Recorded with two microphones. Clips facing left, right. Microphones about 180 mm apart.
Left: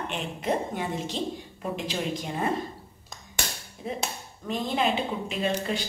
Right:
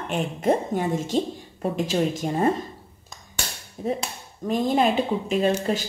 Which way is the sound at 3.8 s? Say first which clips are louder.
Right 6 dB; 45° right (ahead or behind).